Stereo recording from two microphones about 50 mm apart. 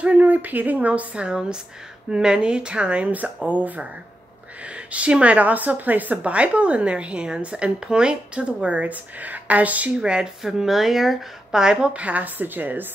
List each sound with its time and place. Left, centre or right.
0.0 s a woman's voice: right
9.9 s a woman's voice: centre
11.9 s a woman's voice: right